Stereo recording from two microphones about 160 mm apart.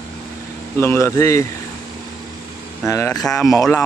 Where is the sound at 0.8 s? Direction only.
15° left (ahead or behind).